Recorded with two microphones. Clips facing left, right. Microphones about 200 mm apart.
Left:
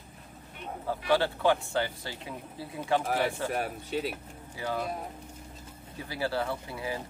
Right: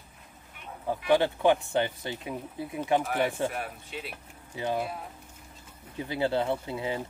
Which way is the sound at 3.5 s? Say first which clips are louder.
Left 5 dB; 40° left (ahead or behind).